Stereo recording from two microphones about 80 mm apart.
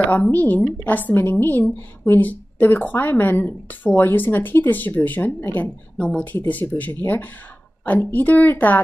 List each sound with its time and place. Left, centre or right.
0.0 s a woman's voice: centre